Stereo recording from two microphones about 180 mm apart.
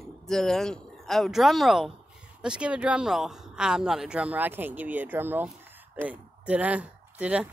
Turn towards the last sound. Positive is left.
turn(degrees=-5)  # may be behind; listen again after turning